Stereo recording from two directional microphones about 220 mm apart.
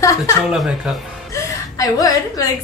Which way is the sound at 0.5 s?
5° right (ahead or behind).